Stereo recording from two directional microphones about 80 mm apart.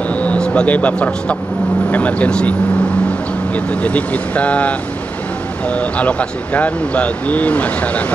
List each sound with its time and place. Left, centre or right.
0.1 s a sound: centre
1.9 s speech: centre
3.5 s speech: centre